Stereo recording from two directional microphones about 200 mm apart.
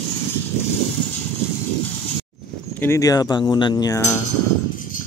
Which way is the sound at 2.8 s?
15° left (ahead or behind).